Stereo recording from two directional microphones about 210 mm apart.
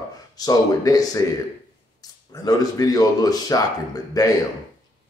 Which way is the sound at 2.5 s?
15° left (ahead or behind).